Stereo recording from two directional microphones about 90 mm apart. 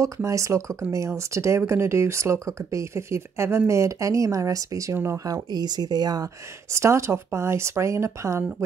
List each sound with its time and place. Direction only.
0.0 s speech: 35° right (ahead or behind)
6.7 s speech: 30° right (ahead or behind)